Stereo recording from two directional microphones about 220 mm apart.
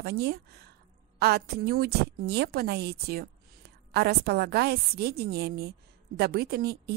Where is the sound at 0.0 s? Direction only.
45° right (ahead or behind).